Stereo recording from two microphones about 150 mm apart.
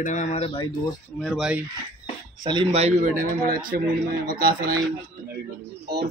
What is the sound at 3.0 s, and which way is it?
Speech, 65° right (ahead or behind).